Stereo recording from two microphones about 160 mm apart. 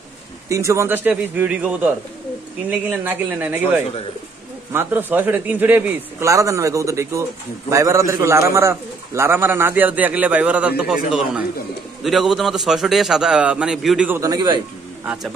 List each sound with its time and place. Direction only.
0.5 s a man's voice: 20° right (ahead or behind)